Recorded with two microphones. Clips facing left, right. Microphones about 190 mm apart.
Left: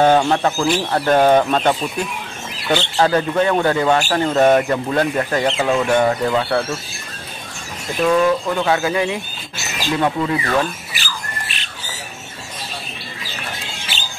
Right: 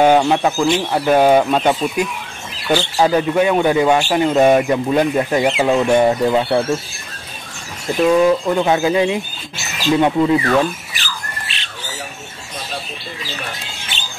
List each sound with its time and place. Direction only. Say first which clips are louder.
0.0 s speech: right 2 dB; 10° right (ahead or behind)
8.1 s speech: right 2 dB; 15° right (ahead or behind)